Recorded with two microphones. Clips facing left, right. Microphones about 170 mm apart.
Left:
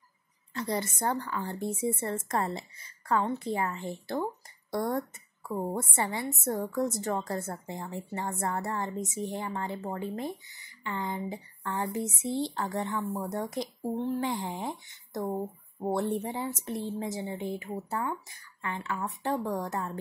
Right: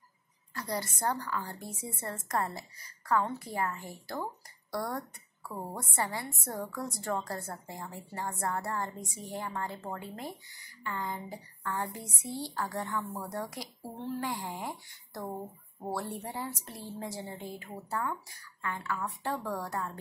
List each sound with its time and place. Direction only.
0.6 s a woman's voice: 25° left (ahead or behind)